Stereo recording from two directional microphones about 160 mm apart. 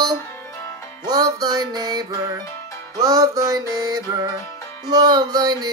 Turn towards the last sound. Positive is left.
turn(degrees=-25)  # may be behind; listen again after turning